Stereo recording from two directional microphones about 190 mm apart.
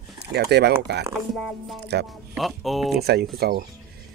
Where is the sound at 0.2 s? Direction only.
60° right (ahead or behind).